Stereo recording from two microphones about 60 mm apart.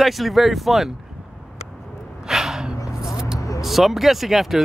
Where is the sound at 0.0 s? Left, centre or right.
Centre.